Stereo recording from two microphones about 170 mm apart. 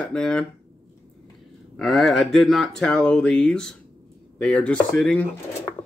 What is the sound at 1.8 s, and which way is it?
Speech, centre (ahead or behind).